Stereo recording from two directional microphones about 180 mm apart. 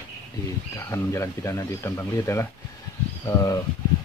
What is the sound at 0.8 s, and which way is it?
Speech, 15° left (ahead or behind).